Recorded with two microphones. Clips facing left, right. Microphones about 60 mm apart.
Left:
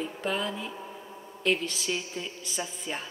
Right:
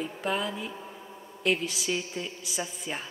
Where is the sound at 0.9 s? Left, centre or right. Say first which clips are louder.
Left 1 dB; centre.